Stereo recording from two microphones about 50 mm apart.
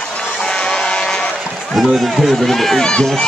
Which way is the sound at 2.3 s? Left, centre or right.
Centre.